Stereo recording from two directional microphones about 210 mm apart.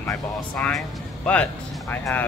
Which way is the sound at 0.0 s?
10° left (ahead or behind).